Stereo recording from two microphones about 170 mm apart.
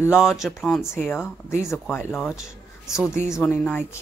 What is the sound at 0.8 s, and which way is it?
Speech, 15° left (ahead or behind).